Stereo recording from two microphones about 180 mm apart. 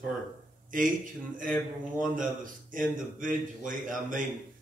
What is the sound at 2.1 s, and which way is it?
Speech, 50° right (ahead or behind).